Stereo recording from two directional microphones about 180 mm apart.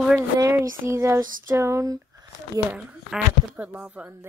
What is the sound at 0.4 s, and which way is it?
Speech, 15° right (ahead or behind).